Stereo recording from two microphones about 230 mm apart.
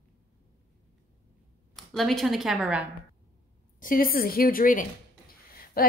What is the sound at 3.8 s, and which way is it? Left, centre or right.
A woman's voice, left.